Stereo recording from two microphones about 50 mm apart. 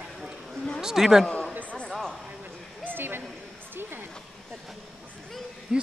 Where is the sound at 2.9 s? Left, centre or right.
Right.